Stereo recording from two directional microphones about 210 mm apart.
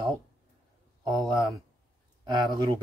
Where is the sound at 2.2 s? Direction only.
20° right (ahead or behind).